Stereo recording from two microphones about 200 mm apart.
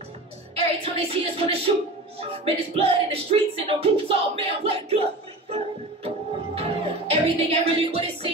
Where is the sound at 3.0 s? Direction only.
30° right (ahead or behind).